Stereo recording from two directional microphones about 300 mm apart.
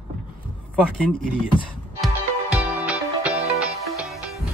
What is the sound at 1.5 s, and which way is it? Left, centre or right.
Music, centre.